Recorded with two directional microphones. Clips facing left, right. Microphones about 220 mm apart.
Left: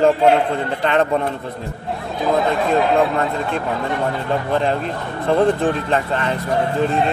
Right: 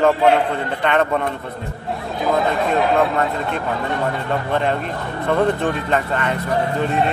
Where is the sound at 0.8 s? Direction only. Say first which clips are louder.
Even; 35° left (ahead or behind).